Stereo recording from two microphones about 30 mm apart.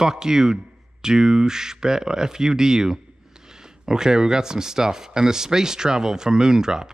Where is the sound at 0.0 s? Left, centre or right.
Centre.